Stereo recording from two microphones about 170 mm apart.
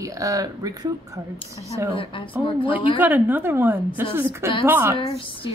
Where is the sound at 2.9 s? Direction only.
10° right (ahead or behind).